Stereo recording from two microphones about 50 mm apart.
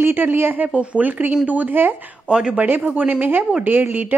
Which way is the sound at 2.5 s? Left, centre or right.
Right.